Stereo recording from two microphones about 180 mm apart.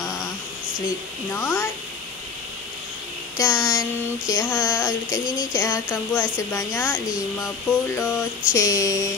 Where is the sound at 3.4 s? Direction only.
20° left (ahead or behind).